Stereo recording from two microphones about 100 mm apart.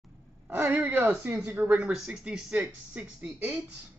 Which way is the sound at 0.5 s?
20° right (ahead or behind).